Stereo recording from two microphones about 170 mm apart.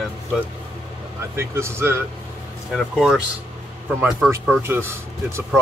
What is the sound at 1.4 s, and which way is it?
Speech, 15° right (ahead or behind).